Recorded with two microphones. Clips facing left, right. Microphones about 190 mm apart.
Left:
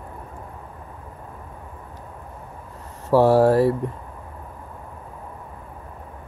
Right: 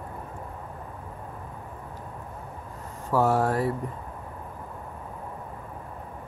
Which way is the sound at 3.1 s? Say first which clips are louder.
Left 8 dB; 35° left (ahead or behind).